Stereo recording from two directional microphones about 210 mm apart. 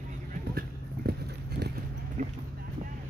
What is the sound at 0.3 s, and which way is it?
Clip-clop, 45° right (ahead or behind).